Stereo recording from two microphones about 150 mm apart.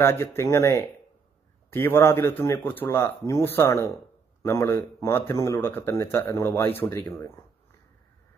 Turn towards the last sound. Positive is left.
turn(degrees=15)  # may be behind; listen again after turning